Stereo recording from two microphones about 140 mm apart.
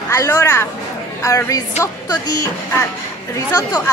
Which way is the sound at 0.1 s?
25° left (ahead or behind).